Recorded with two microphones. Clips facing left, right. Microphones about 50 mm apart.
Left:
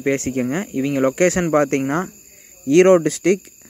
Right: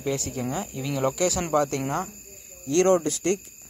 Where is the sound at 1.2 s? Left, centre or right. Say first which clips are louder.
Left 7 dB; left.